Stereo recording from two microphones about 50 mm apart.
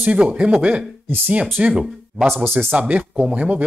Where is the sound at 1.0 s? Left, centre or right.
Right.